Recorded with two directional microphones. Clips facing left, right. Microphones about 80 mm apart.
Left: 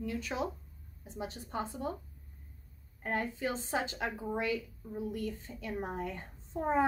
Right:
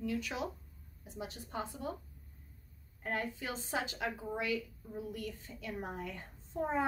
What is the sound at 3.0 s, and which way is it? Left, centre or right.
A woman's voice, left.